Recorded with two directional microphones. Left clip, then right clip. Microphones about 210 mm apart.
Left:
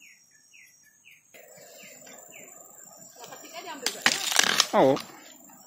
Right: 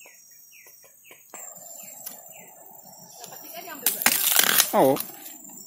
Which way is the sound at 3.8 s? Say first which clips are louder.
Right 1 dB; 25° right (ahead or behind).